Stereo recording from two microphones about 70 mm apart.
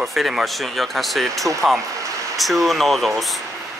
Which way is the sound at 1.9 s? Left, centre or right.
Right.